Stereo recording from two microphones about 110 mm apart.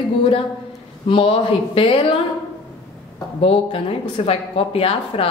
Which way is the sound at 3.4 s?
55° left (ahead or behind).